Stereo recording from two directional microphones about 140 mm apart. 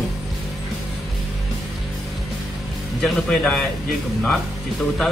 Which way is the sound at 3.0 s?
5° left (ahead or behind).